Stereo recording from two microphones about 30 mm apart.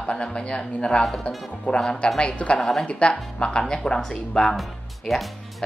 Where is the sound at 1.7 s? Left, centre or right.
Left.